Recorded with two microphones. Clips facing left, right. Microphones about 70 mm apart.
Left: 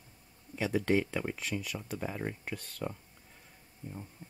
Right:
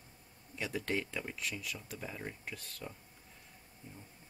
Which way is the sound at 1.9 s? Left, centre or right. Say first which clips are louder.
Left 10 dB; left.